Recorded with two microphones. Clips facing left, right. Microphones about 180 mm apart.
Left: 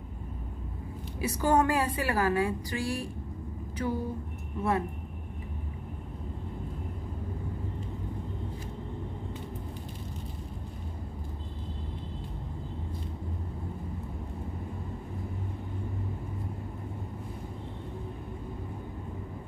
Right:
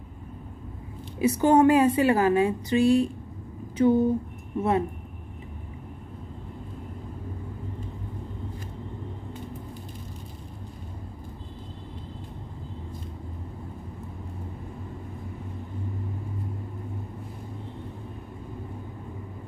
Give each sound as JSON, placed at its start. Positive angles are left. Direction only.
{"t": 1.2, "sound": "a woman's voice", "side_deg": -20}